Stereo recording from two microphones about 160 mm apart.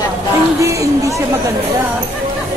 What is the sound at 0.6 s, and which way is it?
Speech, 20° right (ahead or behind).